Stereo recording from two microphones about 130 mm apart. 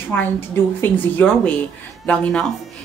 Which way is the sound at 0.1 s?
15° left (ahead or behind).